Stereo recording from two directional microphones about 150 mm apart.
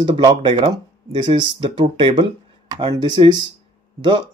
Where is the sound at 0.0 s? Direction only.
30° right (ahead or behind).